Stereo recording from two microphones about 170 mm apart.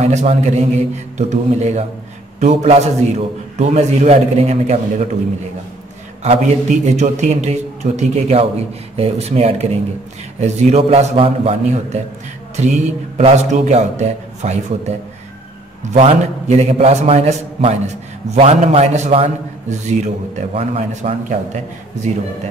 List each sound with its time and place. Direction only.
0.0 s a man's voice: 40° right (ahead or behind)
6.2 s a man's voice: 40° right (ahead or behind)